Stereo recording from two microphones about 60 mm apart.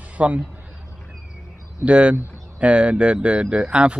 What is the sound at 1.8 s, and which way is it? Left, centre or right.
A woman's voice, centre.